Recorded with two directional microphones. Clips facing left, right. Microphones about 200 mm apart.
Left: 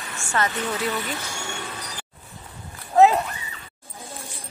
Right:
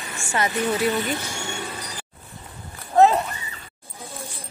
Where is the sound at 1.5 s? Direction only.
5° right (ahead or behind).